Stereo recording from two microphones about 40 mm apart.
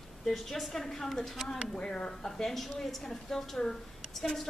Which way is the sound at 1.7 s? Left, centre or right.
Left.